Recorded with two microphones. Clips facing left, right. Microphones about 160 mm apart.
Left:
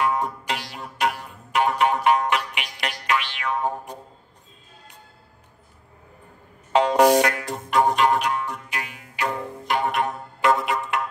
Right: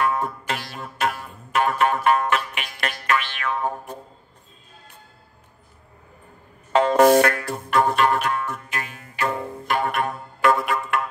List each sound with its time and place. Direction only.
0.0 s music: 15° left (ahead or behind)
6.7 s music: 15° left (ahead or behind)